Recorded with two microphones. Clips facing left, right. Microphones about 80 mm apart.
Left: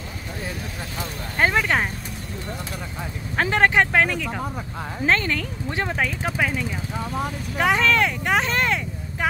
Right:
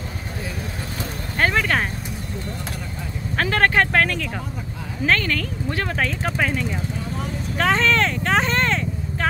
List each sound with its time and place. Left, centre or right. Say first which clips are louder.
1.4 s a sound: even; centre
3.3 s vehicle: even; centre
5.0 s speech: right 1 dB; left
5.9 s speech: right 2 dB; centre
8.4 s vehicle: right 2 dB; centre